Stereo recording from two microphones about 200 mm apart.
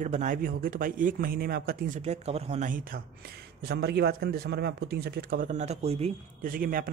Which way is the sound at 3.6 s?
55° right (ahead or behind).